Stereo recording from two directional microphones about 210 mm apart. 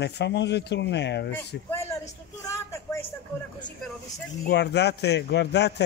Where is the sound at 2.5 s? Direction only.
10° left (ahead or behind).